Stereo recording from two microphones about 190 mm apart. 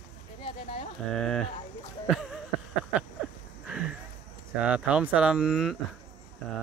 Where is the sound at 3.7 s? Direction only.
5° right (ahead or behind).